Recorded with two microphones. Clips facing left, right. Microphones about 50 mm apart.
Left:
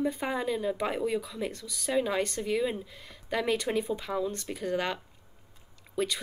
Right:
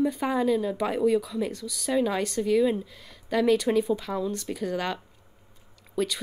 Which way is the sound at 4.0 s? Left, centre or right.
Centre.